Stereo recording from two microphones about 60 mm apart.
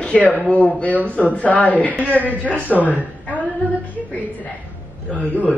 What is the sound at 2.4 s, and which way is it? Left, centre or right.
Speech, right.